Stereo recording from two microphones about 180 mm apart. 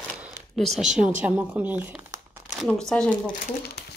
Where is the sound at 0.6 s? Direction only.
Centre (ahead or behind).